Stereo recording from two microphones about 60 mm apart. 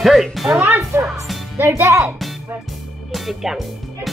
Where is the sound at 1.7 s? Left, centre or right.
Right.